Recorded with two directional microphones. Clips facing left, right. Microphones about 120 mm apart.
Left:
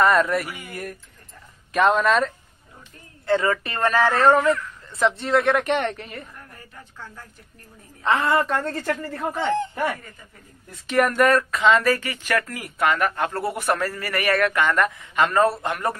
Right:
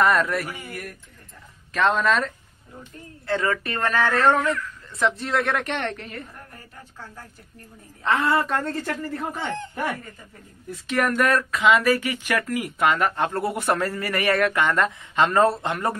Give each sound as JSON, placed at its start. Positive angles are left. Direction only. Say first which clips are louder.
{"t": 0.0, "sound": "a woman's voice", "louder": "left 2 dB", "side_deg": 0}
{"t": 0.7, "sound": "speech", "louder": "left 2 dB", "side_deg": 25}
{"t": 1.7, "sound": "a woman's voice", "louder": "left 2 dB", "side_deg": 10}
{"t": 8.0, "sound": "a woman's voice", "louder": "left 1 dB", "side_deg": 0}
{"t": 9.3, "sound": "speech", "louder": "left 6 dB", "side_deg": 20}
{"t": 10.9, "sound": "a woman's voice", "louder": "left 3 dB", "side_deg": 0}
{"t": 11.7, "sound": "speech", "louder": "even", "side_deg": -15}